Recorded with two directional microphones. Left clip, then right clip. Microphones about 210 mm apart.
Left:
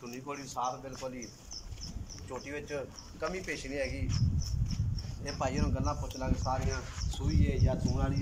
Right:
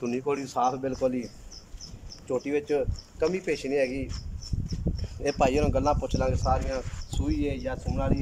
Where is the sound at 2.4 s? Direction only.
55° right (ahead or behind).